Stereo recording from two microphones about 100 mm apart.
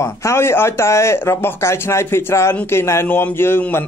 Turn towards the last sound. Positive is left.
turn(degrees=20)  # may be behind; listen again after turning